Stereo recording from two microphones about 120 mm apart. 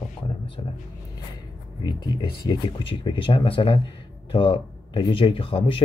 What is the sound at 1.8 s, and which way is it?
Speech, 35° left (ahead or behind).